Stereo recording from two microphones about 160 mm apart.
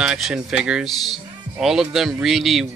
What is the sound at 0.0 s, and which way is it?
Speech, 5° right (ahead or behind).